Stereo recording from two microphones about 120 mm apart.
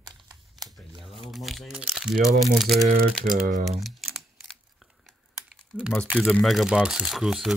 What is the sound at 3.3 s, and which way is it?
Speech, 90° right.